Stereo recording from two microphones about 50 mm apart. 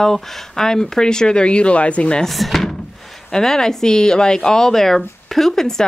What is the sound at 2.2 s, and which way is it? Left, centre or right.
Speech, centre.